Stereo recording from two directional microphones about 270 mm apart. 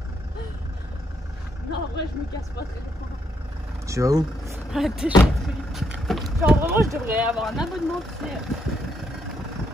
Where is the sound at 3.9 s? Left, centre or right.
Centre.